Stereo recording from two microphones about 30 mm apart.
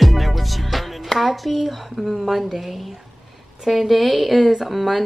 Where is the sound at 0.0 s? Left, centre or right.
Centre.